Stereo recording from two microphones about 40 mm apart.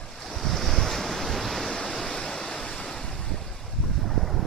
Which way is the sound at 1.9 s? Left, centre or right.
Centre.